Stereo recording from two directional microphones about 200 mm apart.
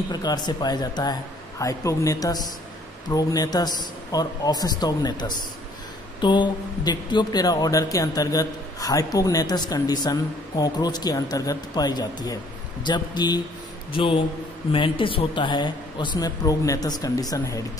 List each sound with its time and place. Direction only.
0.1 s speech: 20° left (ahead or behind)